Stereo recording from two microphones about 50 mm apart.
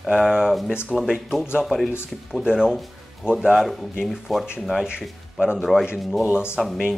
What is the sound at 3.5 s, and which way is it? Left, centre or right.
Speech, centre.